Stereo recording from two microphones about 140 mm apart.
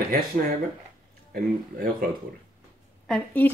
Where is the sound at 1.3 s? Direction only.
90° right.